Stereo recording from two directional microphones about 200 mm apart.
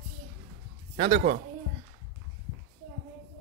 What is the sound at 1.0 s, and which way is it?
Speech, 35° right (ahead or behind).